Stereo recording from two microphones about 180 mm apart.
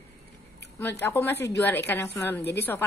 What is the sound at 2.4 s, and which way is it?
Speech, 65° left (ahead or behind).